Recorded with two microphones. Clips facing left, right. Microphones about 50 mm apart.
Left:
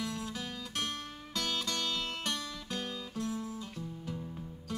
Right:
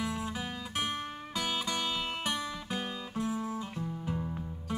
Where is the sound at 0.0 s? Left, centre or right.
Centre.